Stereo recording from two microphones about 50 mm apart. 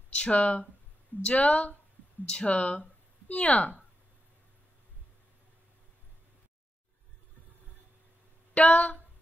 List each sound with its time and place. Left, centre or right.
0.1 s speech: left
8.5 s speech: left